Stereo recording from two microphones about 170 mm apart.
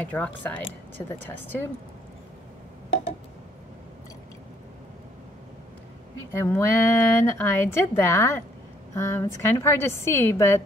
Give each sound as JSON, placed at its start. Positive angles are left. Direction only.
{"t": 0.0, "sound": "a woman's voice", "side_deg": 10}
{"t": 6.3, "sound": "a woman's voice", "side_deg": 15}